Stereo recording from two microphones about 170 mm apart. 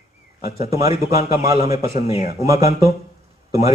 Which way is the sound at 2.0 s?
35° left (ahead or behind).